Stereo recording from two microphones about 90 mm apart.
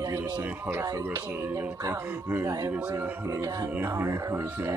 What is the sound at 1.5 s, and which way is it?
A man's voice, 40° right (ahead or behind).